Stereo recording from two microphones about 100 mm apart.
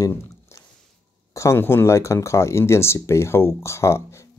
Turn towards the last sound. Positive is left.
turn(degrees=30)  # may be behind; listen again after turning